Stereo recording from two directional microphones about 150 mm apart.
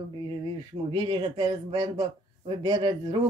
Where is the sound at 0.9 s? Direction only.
35° right (ahead or behind).